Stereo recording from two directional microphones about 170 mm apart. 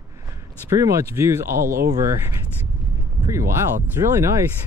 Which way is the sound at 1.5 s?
60° right (ahead or behind).